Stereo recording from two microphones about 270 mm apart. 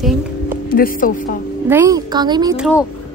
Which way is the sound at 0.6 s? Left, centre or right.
Left.